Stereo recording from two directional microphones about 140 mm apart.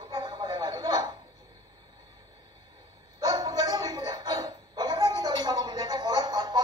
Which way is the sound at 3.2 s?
25° right (ahead or behind).